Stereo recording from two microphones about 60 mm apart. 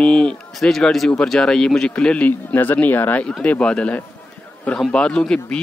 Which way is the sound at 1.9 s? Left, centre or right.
Left.